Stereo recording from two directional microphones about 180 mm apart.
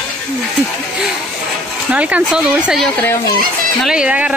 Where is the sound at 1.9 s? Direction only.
5° right (ahead or behind).